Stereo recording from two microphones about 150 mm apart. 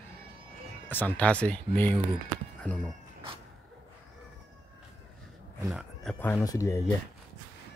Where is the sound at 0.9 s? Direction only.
10° left (ahead or behind).